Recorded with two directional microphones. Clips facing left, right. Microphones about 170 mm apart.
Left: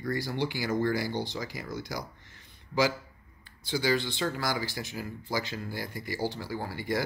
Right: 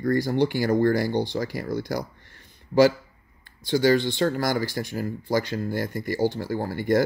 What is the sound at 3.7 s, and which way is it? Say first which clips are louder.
Speech: right 8 dB; 50° right (ahead or behind).